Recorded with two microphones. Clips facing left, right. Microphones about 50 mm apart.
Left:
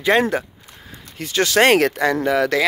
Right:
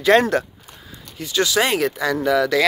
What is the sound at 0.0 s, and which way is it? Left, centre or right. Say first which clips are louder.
Speech: right 2 dB; centre.